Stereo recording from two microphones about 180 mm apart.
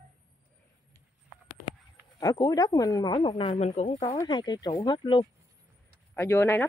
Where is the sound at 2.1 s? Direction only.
20° left (ahead or behind).